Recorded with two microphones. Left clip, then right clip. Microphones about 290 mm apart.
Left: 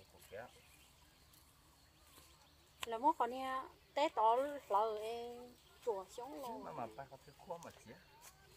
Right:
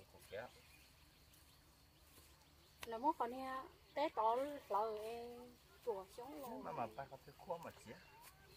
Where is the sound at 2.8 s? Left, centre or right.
Left.